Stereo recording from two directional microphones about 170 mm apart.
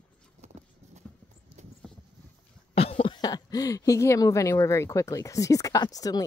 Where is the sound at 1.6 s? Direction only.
45° right (ahead or behind).